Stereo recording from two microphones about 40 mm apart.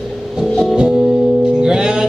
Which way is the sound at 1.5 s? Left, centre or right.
Right.